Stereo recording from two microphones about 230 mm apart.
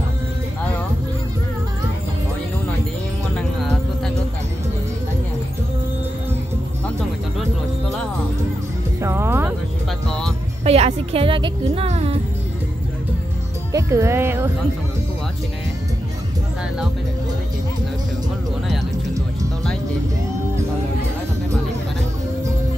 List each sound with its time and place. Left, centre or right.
3.3 s music: centre
9.0 s music: centre
10.0 s music: centre
10.6 s music: right
13.7 s speech: centre